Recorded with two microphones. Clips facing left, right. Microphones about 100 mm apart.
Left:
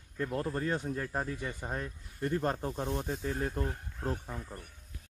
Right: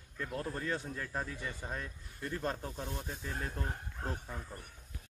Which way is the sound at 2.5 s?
30° left (ahead or behind).